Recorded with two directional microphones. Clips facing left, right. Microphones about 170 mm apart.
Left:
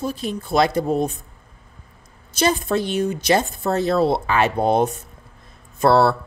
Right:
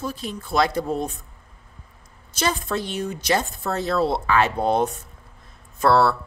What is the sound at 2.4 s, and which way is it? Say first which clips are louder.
A woman's voice: left 5 dB; 20° left (ahead or behind).